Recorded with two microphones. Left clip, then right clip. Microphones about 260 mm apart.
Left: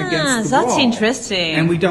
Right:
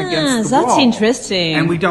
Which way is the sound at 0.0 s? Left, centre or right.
Right.